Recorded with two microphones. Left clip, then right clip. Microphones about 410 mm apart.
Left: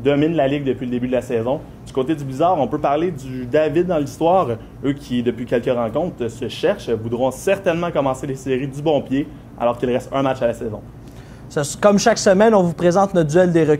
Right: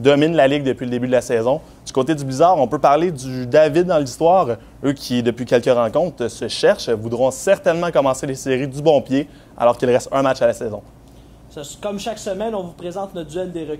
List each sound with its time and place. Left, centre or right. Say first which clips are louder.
0.0 s a man's voice: right 4 dB; right
11.5 s speech: left 12 dB; left